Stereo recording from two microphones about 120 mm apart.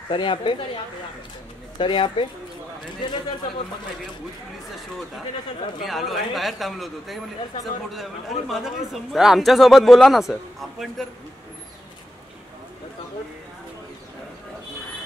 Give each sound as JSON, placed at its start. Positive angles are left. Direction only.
{"t": 0.1, "sound": "a woman's voice", "side_deg": 40}
{"t": 1.8, "sound": "speech", "side_deg": 45}
{"t": 5.9, "sound": "a man's voice", "side_deg": 0}